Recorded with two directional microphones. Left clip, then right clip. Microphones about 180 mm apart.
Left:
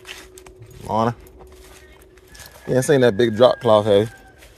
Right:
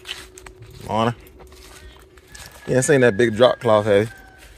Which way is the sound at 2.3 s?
10° left (ahead or behind).